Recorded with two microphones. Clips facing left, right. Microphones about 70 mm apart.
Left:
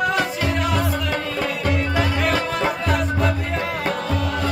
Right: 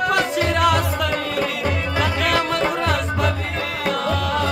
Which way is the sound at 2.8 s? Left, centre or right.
Right.